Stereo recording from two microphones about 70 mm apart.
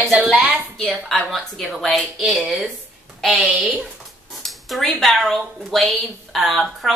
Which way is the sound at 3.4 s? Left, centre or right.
Centre.